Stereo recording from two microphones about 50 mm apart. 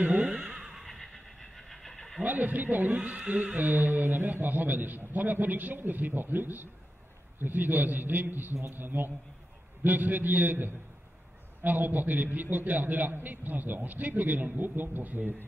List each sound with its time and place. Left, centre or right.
0.0 s neigh: right; by 2.2 s centre
2.2 s speech: right